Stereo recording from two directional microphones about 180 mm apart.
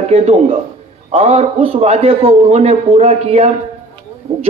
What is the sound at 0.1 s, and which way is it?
Speech, 35° right (ahead or behind).